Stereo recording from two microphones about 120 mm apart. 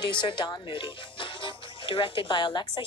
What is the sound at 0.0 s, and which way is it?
Speech, 40° left (ahead or behind).